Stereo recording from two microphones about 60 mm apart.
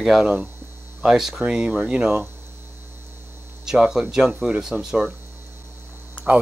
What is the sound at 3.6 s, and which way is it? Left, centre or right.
Speech, centre.